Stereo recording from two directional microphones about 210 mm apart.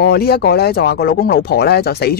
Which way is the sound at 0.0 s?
50° left (ahead or behind).